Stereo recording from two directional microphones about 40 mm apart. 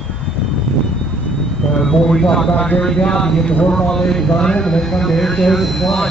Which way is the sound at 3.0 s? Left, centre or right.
Centre.